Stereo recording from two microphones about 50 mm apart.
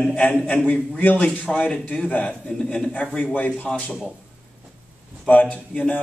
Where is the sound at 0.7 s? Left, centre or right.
Left.